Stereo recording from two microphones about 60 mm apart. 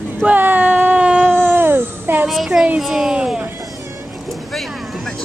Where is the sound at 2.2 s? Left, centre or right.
Centre.